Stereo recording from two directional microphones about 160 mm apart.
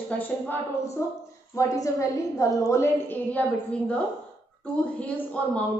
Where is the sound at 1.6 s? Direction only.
20° left (ahead or behind).